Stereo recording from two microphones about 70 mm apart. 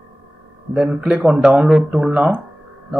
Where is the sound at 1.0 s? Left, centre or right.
Centre.